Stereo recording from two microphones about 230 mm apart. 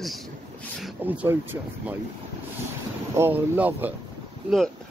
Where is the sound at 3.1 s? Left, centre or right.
Centre.